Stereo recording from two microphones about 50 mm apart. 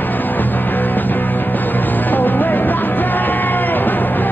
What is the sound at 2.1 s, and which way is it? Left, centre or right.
Music, left.